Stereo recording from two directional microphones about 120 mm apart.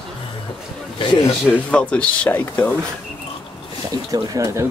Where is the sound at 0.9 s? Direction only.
45° left (ahead or behind).